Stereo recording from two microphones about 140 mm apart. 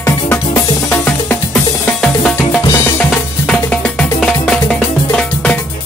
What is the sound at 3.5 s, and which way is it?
Music, 5° left (ahead or behind).